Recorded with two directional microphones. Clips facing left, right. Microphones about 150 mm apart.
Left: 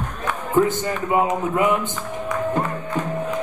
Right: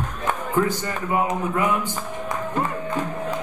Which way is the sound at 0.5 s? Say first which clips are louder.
Left 6 dB; 20° left (ahead or behind).